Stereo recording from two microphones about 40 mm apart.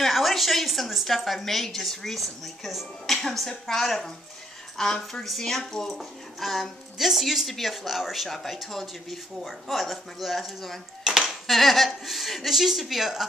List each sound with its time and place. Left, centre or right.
0.0 s a sound: centre
1.0 s a woman's voice: centre
3.2 s a woman's voice: centre
11.1 s dishes: centre
11.4 s a woman's voice: centre